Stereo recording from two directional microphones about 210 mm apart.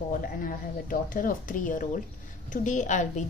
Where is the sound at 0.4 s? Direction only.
40° left (ahead or behind).